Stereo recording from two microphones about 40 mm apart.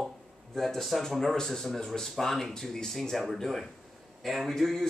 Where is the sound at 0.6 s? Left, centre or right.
Centre.